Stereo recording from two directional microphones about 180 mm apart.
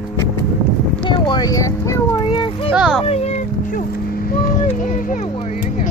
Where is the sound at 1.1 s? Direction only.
25° left (ahead or behind).